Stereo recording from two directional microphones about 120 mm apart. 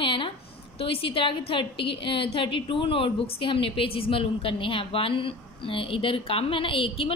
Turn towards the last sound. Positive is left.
turn(degrees=50)  # may be behind; listen again after turning